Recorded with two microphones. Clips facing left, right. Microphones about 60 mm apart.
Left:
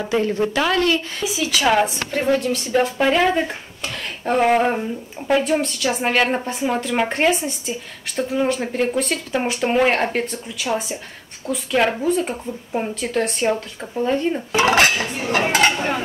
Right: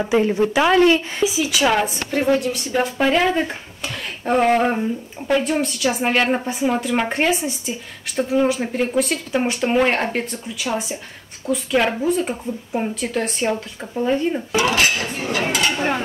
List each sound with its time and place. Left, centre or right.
0.0 s speech: centre
2.7 s speech: centre
14.6 s dishes: left